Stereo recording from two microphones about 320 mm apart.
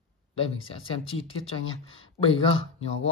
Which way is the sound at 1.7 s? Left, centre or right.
Centre.